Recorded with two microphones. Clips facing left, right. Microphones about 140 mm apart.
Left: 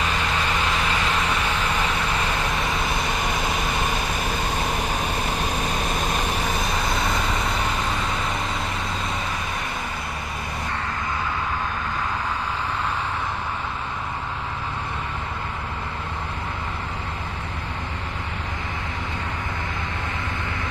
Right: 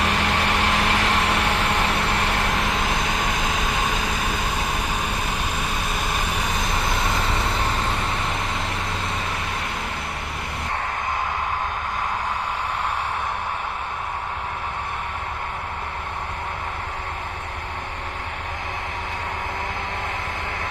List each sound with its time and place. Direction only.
0.0 s vehicle: 70° right (ahead or behind)